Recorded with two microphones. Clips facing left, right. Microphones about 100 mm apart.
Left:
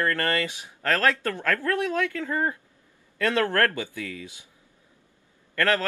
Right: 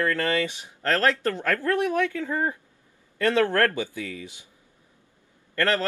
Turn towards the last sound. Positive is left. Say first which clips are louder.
# even
turn(degrees=-20)  # may be behind; listen again after turning